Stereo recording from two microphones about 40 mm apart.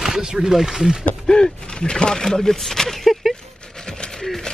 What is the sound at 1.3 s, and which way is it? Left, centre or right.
Speech, left.